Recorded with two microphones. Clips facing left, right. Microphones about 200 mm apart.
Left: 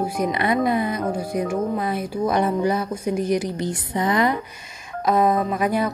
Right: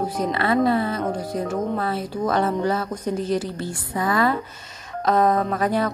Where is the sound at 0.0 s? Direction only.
15° left (ahead or behind).